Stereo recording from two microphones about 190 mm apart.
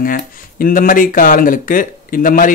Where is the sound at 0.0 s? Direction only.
50° left (ahead or behind).